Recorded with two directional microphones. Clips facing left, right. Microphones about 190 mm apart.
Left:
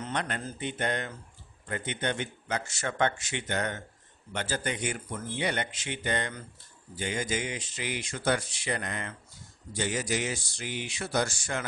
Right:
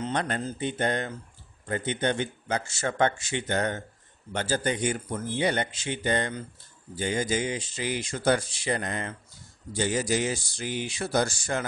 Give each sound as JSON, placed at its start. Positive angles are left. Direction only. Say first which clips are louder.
{"t": 0.0, "sound": "mantra", "louder": "right 4 dB", "side_deg": -35}
{"t": 0.4, "sound": "speech", "louder": "right 5 dB", "side_deg": -30}